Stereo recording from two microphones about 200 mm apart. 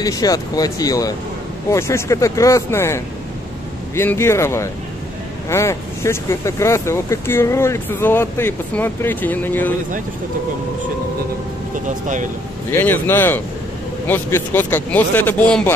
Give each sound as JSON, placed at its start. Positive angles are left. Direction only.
{"t": 0.0, "sound": "speech", "side_deg": 20}
{"t": 12.7, "sound": "speech", "side_deg": 10}